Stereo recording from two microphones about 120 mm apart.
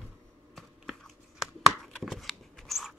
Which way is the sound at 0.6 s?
Centre (ahead or behind).